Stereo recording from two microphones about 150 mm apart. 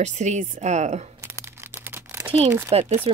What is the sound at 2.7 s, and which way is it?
Speech, 45° right (ahead or behind).